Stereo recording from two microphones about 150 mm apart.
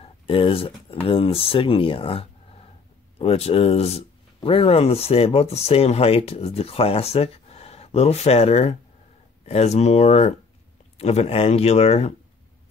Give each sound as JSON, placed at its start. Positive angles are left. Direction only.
{"t": 0.0, "sound": "speech", "side_deg": 40}